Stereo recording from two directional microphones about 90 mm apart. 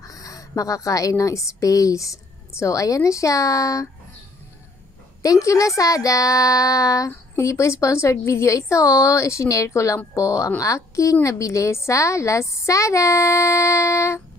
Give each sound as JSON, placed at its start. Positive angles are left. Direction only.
{"t": 0.1, "sound": "speech", "side_deg": 40}
{"t": 5.2, "sound": "a woman's voice", "side_deg": 40}